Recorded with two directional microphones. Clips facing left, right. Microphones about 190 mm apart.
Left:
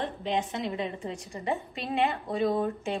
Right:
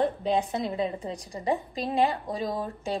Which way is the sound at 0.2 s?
35° right (ahead or behind).